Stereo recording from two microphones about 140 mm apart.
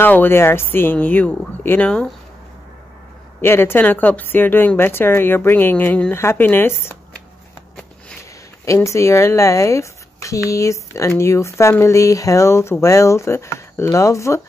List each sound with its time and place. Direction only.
0.0 s speech: 15° left (ahead or behind)
3.3 s speech: 15° left (ahead or behind)
8.6 s speech: 20° left (ahead or behind)